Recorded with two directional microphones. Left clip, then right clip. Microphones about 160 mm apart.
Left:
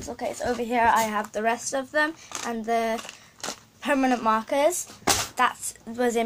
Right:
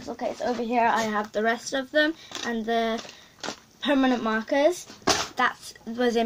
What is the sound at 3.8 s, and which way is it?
Speech, 30° right (ahead or behind).